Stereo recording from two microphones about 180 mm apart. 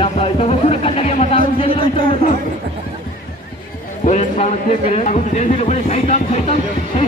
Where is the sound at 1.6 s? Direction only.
30° left (ahead or behind).